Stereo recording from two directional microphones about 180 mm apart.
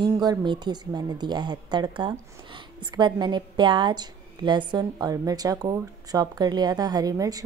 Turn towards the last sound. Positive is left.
turn(degrees=-20)  # may be behind; listen again after turning